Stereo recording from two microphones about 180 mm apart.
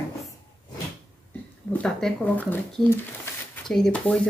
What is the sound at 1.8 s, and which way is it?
A woman's voice, 5° left (ahead or behind).